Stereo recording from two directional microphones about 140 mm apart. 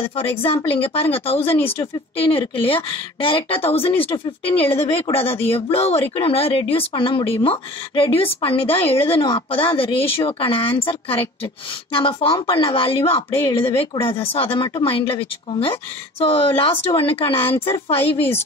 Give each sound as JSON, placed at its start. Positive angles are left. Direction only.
{"t": 0.1, "sound": "a woman's voice", "side_deg": 45}